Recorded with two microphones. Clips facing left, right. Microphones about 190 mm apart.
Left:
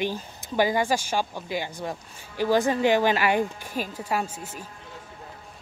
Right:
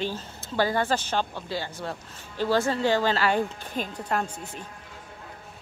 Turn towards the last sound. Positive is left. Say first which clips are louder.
# even
turn(degrees=5)  # may be behind; listen again after turning